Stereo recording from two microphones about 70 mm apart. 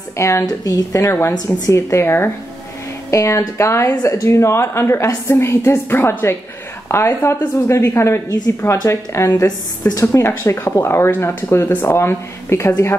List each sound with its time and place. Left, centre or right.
0.2 s speech: left
0.5 s speech: left
1.0 s speech: left